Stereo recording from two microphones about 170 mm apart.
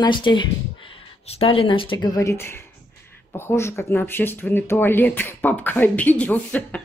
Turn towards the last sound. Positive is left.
turn(degrees=10)  # may be behind; listen again after turning